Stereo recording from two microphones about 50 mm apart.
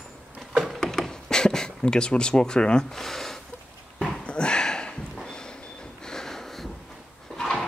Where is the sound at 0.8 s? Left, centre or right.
Centre.